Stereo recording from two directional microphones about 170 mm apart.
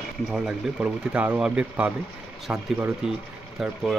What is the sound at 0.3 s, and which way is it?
Speech, 5° right (ahead or behind).